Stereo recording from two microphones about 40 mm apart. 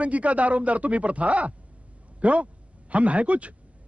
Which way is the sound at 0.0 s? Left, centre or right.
Right.